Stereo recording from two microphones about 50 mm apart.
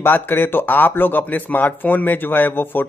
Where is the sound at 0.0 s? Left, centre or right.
Left.